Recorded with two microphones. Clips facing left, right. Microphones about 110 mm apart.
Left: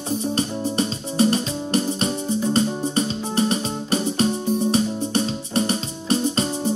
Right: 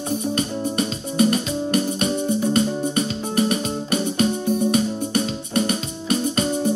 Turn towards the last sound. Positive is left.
turn(degrees=30)  # may be behind; listen again after turning